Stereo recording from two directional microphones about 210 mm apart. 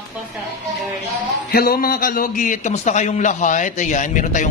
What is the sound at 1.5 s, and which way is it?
A man's voice, 45° left (ahead or behind).